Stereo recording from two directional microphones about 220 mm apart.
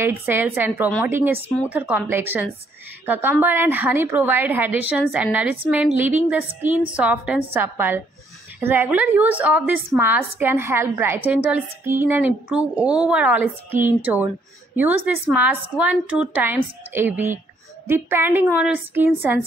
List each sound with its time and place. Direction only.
0.0 s speech: 10° right (ahead or behind)